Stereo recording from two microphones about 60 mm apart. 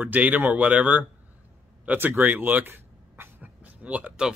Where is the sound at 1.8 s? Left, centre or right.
Right.